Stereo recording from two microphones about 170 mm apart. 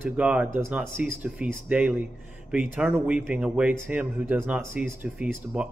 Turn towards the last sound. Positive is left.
turn(degrees=-5)  # may be behind; listen again after turning